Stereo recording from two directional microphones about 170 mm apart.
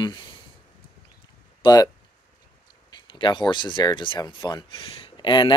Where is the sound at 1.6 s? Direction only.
20° left (ahead or behind).